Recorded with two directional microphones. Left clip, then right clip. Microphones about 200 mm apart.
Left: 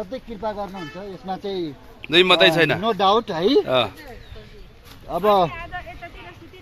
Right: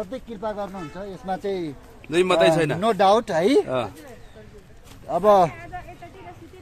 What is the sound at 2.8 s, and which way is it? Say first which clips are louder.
Speech: right 1 dB; 25° right (ahead or behind).